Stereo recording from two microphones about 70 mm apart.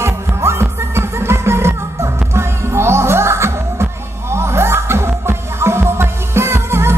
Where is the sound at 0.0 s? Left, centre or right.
Right.